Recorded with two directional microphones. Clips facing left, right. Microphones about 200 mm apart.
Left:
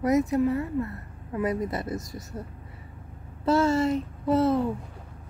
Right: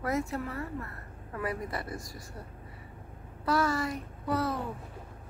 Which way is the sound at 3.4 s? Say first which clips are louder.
Left 7 dB; 25° left (ahead or behind).